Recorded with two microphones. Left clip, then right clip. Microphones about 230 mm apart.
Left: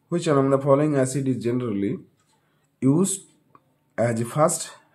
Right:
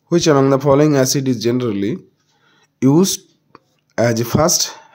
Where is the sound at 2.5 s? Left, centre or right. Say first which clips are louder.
Right 8 dB; right.